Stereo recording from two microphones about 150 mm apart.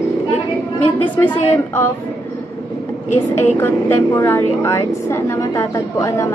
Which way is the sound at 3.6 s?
15° left (ahead or behind).